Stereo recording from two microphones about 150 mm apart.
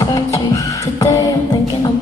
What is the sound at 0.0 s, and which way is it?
Music, 25° left (ahead or behind).